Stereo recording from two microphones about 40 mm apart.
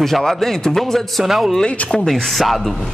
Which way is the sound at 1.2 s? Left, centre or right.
Centre.